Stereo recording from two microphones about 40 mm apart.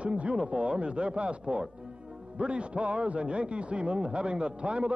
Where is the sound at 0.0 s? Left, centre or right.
Right.